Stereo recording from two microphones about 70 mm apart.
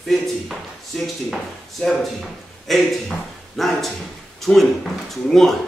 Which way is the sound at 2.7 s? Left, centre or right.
Centre.